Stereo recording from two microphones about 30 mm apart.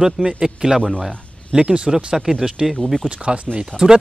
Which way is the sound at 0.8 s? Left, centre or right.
Left.